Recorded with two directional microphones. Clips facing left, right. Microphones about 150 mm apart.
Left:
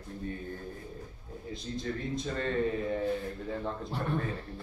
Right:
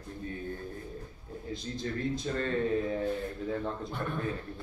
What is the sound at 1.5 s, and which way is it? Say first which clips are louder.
Speech: even; centre (ahead or behind).